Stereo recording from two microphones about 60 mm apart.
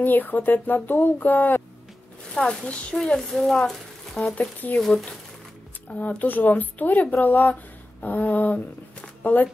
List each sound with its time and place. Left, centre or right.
0.0 s speech: left
2.3 s speech: centre
3.0 s speech: centre
4.4 s a sound: left
4.8 s speech: centre
5.9 s speech: left
8.0 s a sound: left
9.2 s speech: left